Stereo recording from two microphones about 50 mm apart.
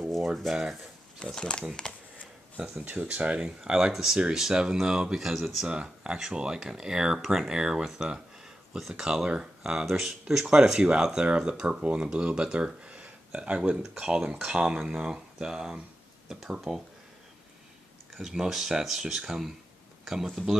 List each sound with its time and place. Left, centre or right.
0.5 s speech: centre
1.2 s speech: centre
2.8 s speech: right; by 5.7 s centre
5.7 s speech: centre
16.3 s a sound: centre
18.1 s speech: centre